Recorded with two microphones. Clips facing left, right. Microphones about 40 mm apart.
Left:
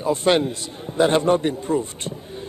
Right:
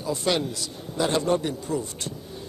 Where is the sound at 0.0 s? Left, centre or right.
Left.